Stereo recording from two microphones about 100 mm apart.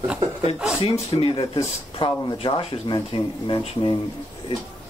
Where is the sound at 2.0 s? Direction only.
60° left (ahead or behind).